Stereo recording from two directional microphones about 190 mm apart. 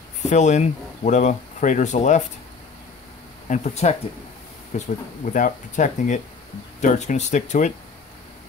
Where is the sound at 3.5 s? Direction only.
35° left (ahead or behind).